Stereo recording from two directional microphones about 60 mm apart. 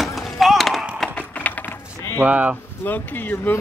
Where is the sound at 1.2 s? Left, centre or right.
Left.